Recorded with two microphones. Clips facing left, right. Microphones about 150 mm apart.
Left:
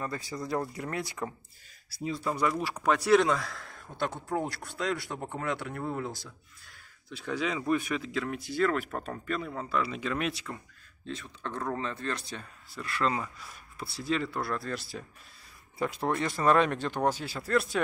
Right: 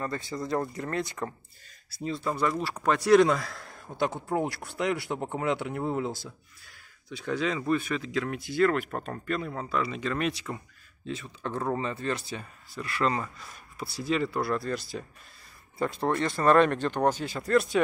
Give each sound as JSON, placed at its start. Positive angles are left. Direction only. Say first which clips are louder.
{"t": 0.0, "sound": "speech", "louder": "right 3 dB", "side_deg": 5}
{"t": 4.4, "sound": "speech", "louder": "right 4 dB", "side_deg": -15}
{"t": 7.1, "sound": "speech", "louder": "right 3 dB", "side_deg": 0}